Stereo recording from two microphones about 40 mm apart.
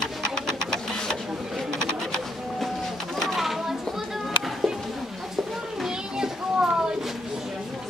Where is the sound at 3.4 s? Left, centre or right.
Centre.